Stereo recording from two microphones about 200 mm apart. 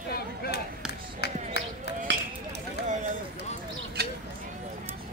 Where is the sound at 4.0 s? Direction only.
55° right (ahead or behind).